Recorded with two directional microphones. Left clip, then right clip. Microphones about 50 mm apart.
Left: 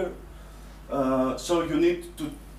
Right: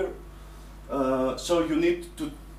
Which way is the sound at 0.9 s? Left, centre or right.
Centre.